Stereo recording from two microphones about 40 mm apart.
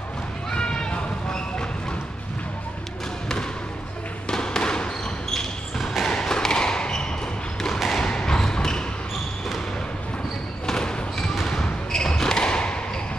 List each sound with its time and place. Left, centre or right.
0.5 s a sound: left
4.3 s basketball bounce: centre
5.3 s basketball bounce: centre
6.1 s a sound: centre
7.6 s thump: centre
8.0 s thump: left
10.7 s basketball bounce: centre